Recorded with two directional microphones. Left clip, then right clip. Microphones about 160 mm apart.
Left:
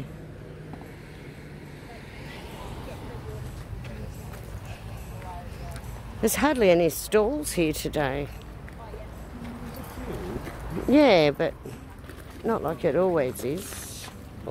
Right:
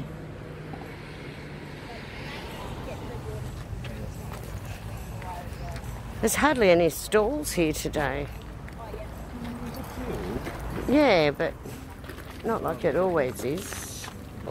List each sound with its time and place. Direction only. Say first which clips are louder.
6.2 s speech: even; 40° left (ahead or behind)
8.0 s speech: left 2 dB; 55° left (ahead or behind)
10.9 s speech: left 2 dB; 60° left (ahead or behind); by 13.7 s 35° left (ahead or behind)